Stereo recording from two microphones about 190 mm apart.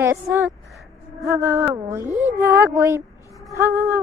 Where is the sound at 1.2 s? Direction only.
15° right (ahead or behind).